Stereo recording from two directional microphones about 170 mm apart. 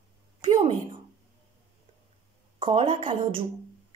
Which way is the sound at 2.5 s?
30° right (ahead or behind).